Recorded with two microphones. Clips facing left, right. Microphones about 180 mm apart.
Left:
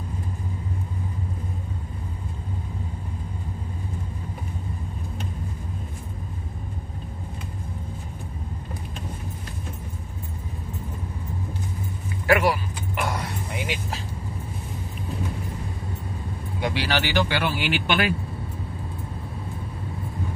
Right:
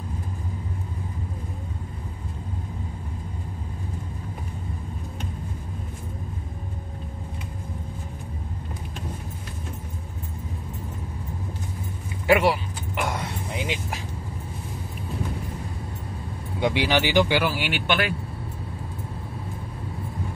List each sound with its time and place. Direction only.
12.3 s dog: 25° right (ahead or behind)
16.5 s speech: 20° right (ahead or behind)
17.5 s speech: centre (ahead or behind)